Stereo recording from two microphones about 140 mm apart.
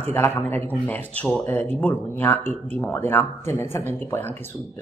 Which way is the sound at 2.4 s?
50° right (ahead or behind).